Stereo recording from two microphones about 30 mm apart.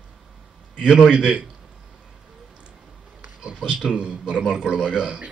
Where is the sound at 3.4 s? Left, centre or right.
Right.